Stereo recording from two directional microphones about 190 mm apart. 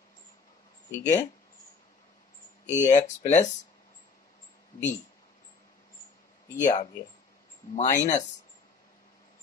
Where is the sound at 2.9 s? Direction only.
40° left (ahead or behind).